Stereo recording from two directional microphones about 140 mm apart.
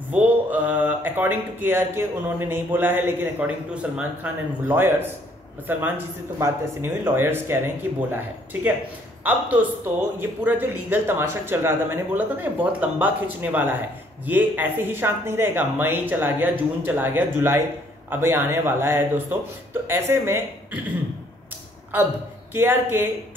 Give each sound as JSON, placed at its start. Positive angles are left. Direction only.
{"t": 0.1, "sound": "speech", "side_deg": -10}
{"t": 22.5, "sound": "speech", "side_deg": -15}